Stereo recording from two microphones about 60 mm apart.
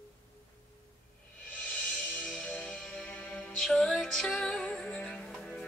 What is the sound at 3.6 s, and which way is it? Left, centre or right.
Music, centre.